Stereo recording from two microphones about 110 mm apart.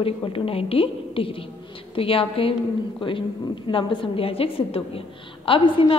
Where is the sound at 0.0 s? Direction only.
60° left (ahead or behind).